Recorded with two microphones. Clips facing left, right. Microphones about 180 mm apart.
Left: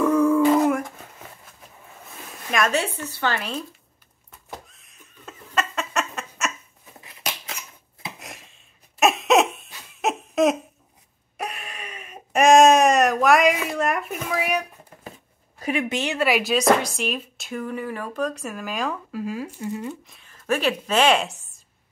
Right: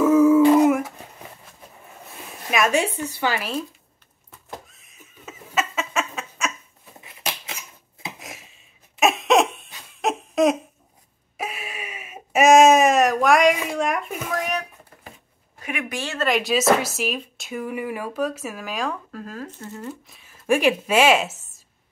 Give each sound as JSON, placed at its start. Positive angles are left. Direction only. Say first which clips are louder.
{"t": 0.0, "sound": "humming", "louder": "right 4 dB", "side_deg": -5}
{"t": 2.5, "sound": "speech", "louder": "right 2 dB", "side_deg": -10}
{"t": 4.5, "sound": "fowl", "louder": "right 1 dB", "side_deg": 0}
{"t": 8.2, "sound": "a sound", "louder": "right 1 dB", "side_deg": 0}
{"t": 15.6, "sound": "speech", "louder": "left 5 dB", "side_deg": 30}
{"t": 19.9, "sound": "speech", "louder": "even", "side_deg": -5}